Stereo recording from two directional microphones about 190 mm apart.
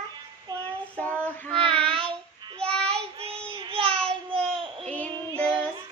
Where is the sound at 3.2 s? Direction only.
30° right (ahead or behind).